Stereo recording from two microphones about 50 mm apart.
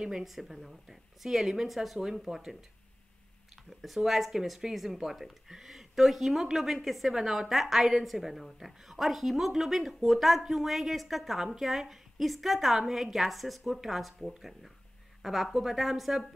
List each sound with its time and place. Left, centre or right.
0.0 s speech: centre
3.8 s speech: centre